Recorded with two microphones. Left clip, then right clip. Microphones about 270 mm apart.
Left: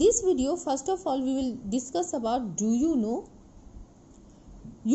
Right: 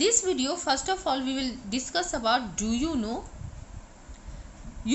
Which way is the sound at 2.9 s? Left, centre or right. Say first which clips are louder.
Left 3 dB; centre.